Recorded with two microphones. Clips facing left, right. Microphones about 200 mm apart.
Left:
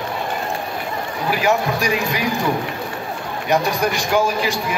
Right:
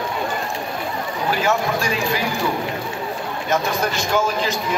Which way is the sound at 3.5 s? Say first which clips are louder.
Left 3 dB; 15° left (ahead or behind).